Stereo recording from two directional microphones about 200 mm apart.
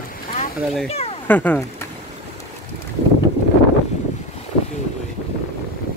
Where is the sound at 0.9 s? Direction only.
30° left (ahead or behind).